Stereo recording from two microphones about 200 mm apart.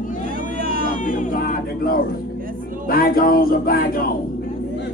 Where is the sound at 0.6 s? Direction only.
45° right (ahead or behind).